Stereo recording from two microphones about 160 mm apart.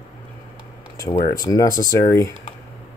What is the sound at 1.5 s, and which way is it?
Speech, 20° left (ahead or behind).